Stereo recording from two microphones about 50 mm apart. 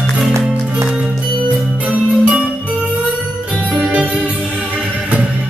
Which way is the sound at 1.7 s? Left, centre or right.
Right.